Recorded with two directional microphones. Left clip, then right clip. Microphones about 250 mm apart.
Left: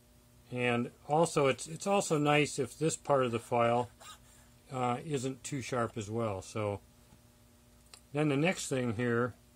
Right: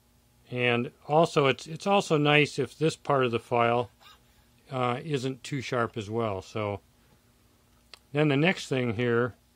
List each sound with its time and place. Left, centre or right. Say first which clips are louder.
0.5 s speech: right 6 dB; right
7.9 s speech: right 6 dB; right